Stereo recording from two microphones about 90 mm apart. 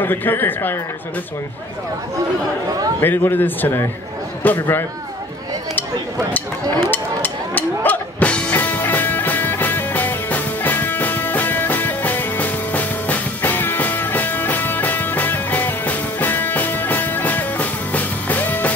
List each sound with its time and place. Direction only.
0.0 s a man's voice: 20° left (ahead or behind)
3.0 s a man's voice: 25° left (ahead or behind)
6.9 s music: 20° left (ahead or behind)